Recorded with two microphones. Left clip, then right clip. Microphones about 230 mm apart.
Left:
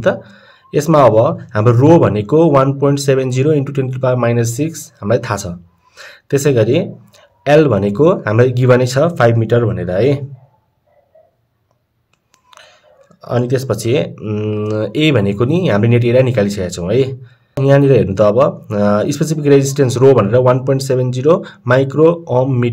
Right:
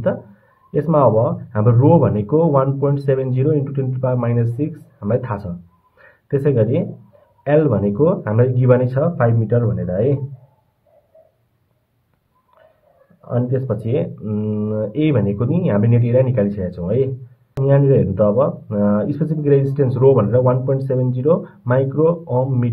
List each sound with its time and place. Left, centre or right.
0.7 s speech: left
13.3 s speech: left